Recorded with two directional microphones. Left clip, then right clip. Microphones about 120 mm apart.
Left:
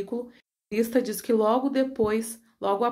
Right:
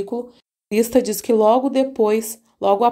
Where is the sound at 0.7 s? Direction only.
65° right (ahead or behind).